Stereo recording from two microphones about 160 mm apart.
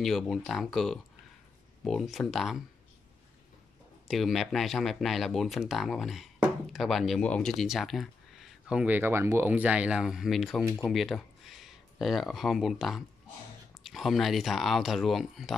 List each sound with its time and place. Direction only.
0.0 s speech: centre (ahead or behind)
4.1 s speech: centre (ahead or behind)